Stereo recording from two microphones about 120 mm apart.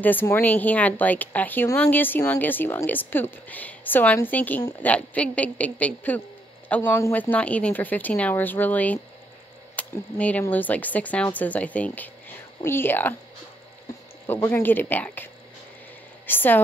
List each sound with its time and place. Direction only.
0.0 s a woman's voice: 15° left (ahead or behind)
14.2 s a woman's voice: 20° left (ahead or behind)
16.3 s a woman's voice: 15° left (ahead or behind)